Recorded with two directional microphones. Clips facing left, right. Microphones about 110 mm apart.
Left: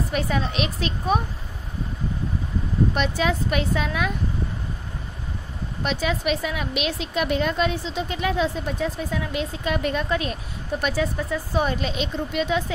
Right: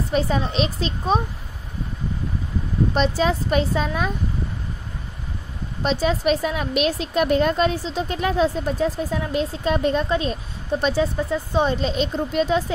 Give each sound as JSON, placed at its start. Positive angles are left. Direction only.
{"t": 0.1, "sound": "a woman's voice", "side_deg": -30}
{"t": 2.9, "sound": "a woman's voice", "side_deg": -30}
{"t": 5.8, "sound": "a woman's voice", "side_deg": -35}
{"t": 11.9, "sound": "a woman's voice", "side_deg": -40}